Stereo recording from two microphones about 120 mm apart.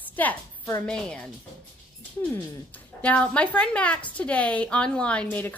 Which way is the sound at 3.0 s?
10° left (ahead or behind).